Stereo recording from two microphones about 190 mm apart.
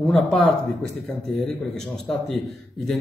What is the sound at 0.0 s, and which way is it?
Speech, 5° left (ahead or behind).